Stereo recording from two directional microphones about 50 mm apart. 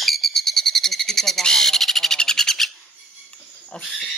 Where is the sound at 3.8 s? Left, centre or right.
Centre.